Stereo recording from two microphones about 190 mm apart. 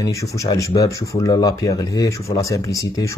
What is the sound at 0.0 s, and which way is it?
Speech, 15° left (ahead or behind).